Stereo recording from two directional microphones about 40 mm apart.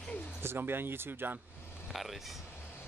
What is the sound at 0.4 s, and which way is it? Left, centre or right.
Speech, right.